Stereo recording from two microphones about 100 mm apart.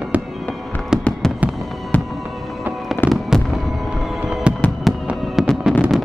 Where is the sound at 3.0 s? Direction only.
20° left (ahead or behind).